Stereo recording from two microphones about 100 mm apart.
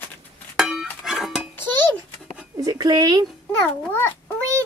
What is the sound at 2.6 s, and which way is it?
Speech, 40° right (ahead or behind).